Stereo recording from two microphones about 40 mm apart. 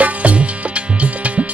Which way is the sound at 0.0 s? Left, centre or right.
Right.